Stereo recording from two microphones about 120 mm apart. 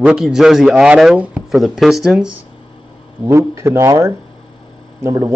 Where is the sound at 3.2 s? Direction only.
25° right (ahead or behind).